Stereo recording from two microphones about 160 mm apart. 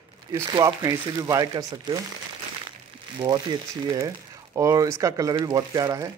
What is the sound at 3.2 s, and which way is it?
Speech, 25° right (ahead or behind).